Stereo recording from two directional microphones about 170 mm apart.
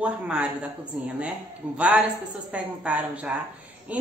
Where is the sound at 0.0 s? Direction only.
5° right (ahead or behind).